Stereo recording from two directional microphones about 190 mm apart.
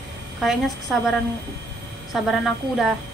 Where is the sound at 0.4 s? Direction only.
Centre (ahead or behind).